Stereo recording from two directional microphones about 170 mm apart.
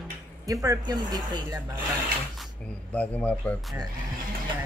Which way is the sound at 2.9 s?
10° left (ahead or behind).